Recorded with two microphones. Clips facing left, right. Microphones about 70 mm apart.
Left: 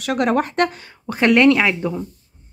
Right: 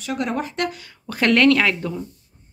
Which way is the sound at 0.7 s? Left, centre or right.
Left.